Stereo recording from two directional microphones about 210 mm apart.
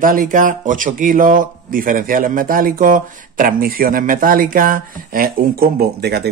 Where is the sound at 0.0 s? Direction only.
40° right (ahead or behind).